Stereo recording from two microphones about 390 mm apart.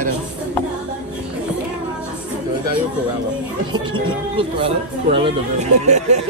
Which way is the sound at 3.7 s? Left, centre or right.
Centre.